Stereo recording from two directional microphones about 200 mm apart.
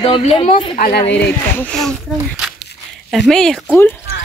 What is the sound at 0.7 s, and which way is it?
Speech, 45° left (ahead or behind).